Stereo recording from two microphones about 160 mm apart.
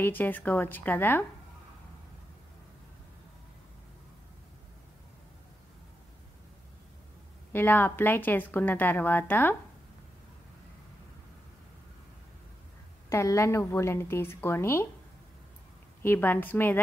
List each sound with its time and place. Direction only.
0.0 s a woman's voice: 10° left (ahead or behind)
7.5 s a woman's voice: 15° left (ahead or behind)
13.1 s a woman's voice: 20° left (ahead or behind)
16.0 s a woman's voice: 15° left (ahead or behind)